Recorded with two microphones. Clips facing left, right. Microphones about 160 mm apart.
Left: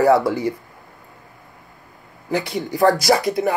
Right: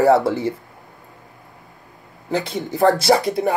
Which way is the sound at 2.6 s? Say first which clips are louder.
Right 1 dB; 20° right (ahead or behind).